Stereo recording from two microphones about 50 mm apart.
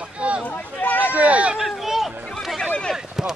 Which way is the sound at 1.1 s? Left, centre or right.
Right.